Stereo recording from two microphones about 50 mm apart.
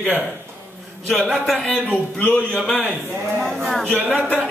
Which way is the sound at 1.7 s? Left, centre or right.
Centre.